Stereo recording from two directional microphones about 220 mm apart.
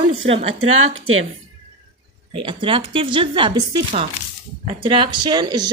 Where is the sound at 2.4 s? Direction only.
25° right (ahead or behind).